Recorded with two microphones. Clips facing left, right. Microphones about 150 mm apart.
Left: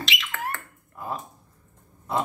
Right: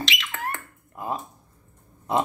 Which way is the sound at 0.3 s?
20° right (ahead or behind).